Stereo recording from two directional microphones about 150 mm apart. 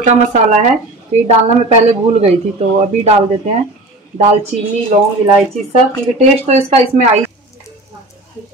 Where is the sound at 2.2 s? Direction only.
45° right (ahead or behind).